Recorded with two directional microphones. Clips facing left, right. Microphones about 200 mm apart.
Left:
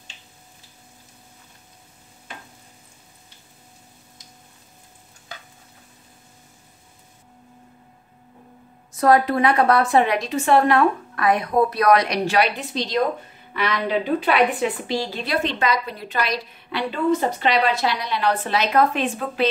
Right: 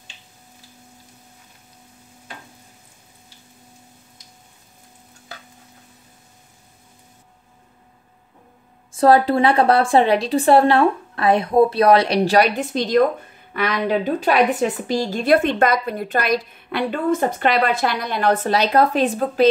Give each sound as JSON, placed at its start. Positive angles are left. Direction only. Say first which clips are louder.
{"t": 8.9, "sound": "a woman's voice", "louder": "right 3 dB", "side_deg": -30}
{"t": 14.2, "sound": "a woman's voice", "louder": "right 4 dB", "side_deg": -45}